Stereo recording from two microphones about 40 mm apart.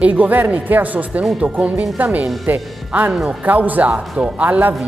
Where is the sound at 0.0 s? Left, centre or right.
Right.